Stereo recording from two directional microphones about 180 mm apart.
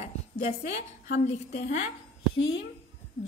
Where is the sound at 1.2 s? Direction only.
40° left (ahead or behind).